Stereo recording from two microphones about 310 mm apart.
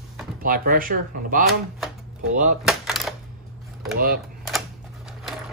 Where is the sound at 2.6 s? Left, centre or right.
Centre.